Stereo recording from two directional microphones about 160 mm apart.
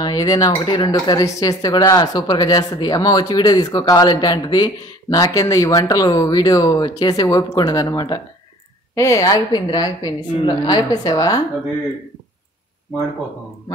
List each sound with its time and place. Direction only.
0.0 s speech: 25° left (ahead or behind)